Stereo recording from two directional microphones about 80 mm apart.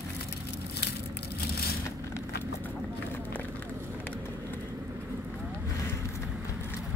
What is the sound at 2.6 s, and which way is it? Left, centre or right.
Run, left.